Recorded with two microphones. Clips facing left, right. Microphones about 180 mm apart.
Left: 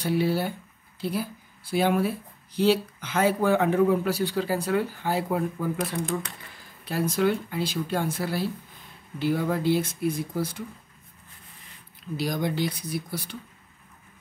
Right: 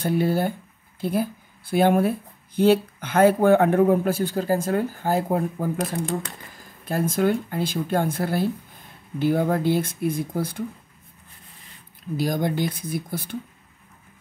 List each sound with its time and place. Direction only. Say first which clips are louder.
0.0 s speech: right 3 dB; 50° right (ahead or behind)
12.2 s speech: right 3 dB; 50° right (ahead or behind)